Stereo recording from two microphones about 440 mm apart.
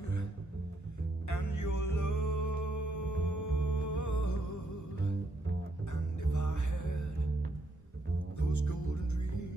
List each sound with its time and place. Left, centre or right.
1.2 s music: left
6.3 s music: left
8.4 s music: left